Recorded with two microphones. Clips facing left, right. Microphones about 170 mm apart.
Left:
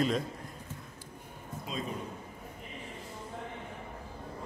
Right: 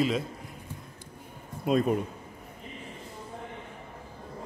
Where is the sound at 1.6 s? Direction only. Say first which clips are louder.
Right 13 dB; 60° right (ahead or behind).